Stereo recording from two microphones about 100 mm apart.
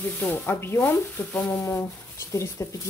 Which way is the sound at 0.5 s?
25° left (ahead or behind).